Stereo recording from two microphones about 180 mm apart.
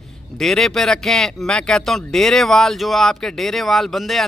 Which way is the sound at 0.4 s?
Centre (ahead or behind).